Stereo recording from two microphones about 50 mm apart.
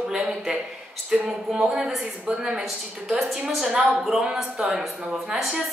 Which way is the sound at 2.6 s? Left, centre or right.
Centre.